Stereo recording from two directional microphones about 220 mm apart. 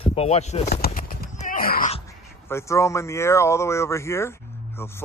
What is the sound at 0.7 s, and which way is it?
Horse, 45° left (ahead or behind).